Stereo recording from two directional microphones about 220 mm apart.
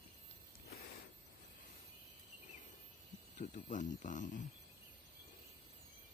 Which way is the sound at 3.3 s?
35° left (ahead or behind).